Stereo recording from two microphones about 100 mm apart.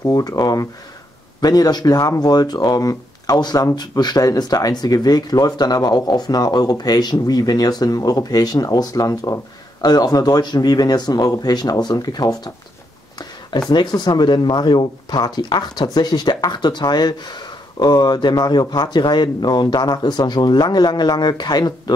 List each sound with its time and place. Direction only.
0.0 s speech: 35° left (ahead or behind)
13.5 s speech: 45° left (ahead or behind)